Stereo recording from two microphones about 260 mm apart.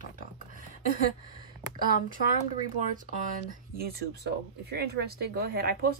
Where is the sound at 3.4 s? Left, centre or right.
Right.